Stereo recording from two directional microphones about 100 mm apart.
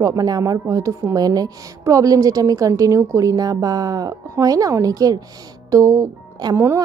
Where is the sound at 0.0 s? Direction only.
40° right (ahead or behind).